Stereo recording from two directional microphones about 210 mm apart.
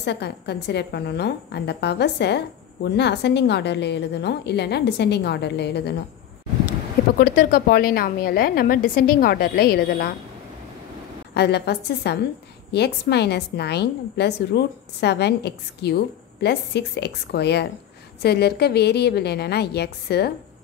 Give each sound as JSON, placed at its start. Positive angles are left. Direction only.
{"t": 0.0, "sound": "a woman's voice", "side_deg": 55}
{"t": 7.2, "sound": "a woman's voice", "side_deg": 45}
{"t": 11.3, "sound": "a woman's voice", "side_deg": 50}